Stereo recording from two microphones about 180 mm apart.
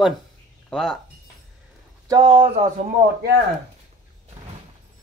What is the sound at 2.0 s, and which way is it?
Speech, 25° right (ahead or behind).